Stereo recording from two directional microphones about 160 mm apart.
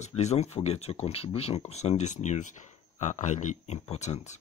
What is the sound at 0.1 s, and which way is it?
Speech, 40° left (ahead or behind).